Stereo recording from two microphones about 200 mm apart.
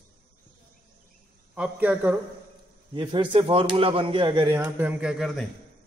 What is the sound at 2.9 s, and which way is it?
Speech, 25° right (ahead or behind).